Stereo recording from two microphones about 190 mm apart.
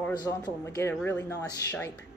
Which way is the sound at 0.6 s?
15° left (ahead or behind).